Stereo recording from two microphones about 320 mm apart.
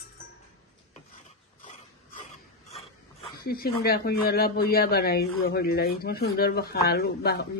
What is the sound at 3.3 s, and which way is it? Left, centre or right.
Speech, left.